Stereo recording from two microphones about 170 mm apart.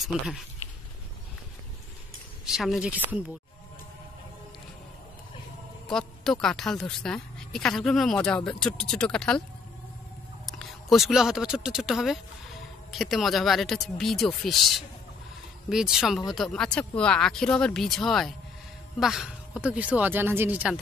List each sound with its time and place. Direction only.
0.1 s speech: centre (ahead or behind)
2.4 s speech: centre (ahead or behind)
5.9 s a man's voice: 5° left (ahead or behind)
10.4 s speech: centre (ahead or behind)
15.7 s speech: 5° right (ahead or behind)